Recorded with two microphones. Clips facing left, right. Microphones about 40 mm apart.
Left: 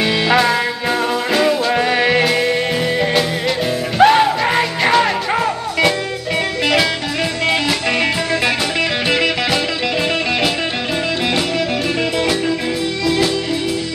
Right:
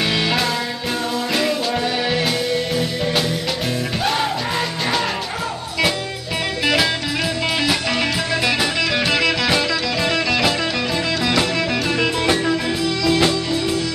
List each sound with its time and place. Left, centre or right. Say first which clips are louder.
0.0 s music: left 3 dB; centre
1.7 s music: left 6 dB; left
4.0 s music: left 12 dB; left
7.9 s music: left 3 dB; left